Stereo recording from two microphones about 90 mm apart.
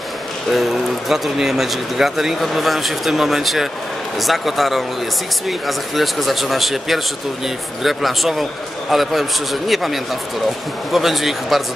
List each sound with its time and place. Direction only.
0.5 s speech: centre (ahead or behind)